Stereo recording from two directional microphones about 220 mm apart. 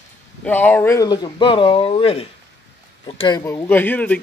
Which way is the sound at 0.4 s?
5° left (ahead or behind).